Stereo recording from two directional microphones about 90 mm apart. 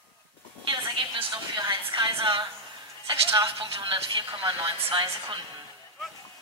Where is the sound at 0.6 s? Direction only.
65° right (ahead or behind).